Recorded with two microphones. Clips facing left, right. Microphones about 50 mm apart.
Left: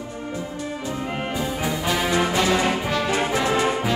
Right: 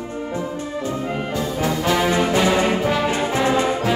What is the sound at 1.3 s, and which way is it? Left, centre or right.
Brass instrument, centre.